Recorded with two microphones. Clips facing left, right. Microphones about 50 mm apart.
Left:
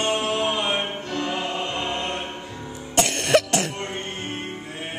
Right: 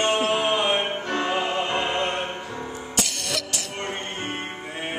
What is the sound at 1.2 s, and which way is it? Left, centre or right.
Music, right.